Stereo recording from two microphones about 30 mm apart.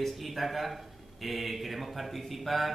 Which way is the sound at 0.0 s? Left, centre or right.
Centre.